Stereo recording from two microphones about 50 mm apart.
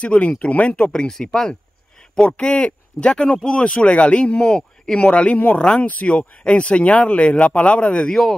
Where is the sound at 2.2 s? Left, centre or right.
Left.